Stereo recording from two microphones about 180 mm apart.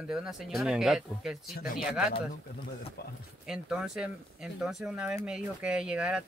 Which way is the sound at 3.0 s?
60° left (ahead or behind).